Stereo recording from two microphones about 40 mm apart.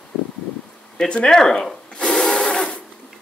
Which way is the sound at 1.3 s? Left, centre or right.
Centre.